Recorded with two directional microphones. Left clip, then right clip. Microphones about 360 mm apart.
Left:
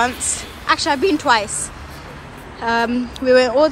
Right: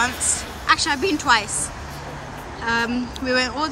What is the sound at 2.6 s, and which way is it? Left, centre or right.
Speech, centre.